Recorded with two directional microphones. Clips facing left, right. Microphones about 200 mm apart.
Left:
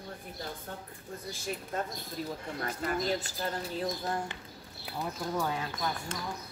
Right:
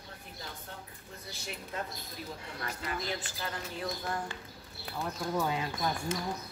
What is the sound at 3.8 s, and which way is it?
Speech, 25° left (ahead or behind).